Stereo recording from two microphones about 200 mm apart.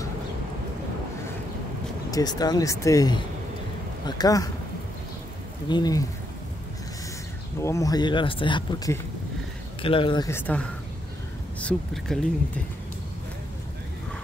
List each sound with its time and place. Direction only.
2.0 s speech: 20° left (ahead or behind)
5.7 s speech: 20° left (ahead or behind)
7.6 s speech: 15° left (ahead or behind)